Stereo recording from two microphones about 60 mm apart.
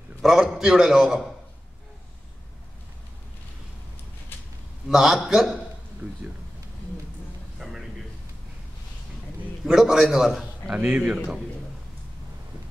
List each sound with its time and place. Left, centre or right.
0.2 s a man's voice: centre
4.3 s a sound: left
4.8 s a man's voice: centre
6.0 s a man's voice: right
7.5 s a sound: centre
9.7 s a man's voice: centre
10.8 s a man's voice: centre